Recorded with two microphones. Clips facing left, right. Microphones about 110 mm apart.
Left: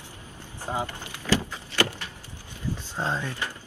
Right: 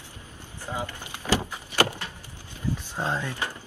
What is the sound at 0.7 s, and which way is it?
Speech, 25° left (ahead or behind).